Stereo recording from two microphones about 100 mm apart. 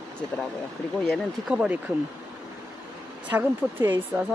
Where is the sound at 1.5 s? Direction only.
15° right (ahead or behind).